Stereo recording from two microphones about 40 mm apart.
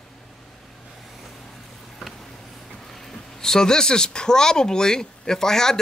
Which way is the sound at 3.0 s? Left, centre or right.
Centre.